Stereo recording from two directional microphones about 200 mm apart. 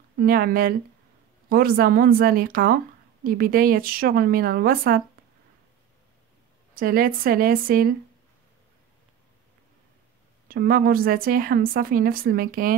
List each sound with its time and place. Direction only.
0.2 s a woman's voice: 45° right (ahead or behind)
6.7 s a woman's voice: 45° right (ahead or behind)
10.5 s a woman's voice: 45° right (ahead or behind)